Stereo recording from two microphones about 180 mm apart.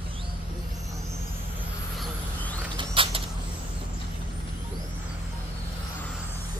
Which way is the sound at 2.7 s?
30° right (ahead or behind).